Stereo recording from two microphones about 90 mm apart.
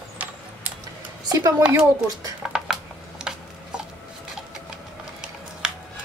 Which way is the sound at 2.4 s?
5° right (ahead or behind).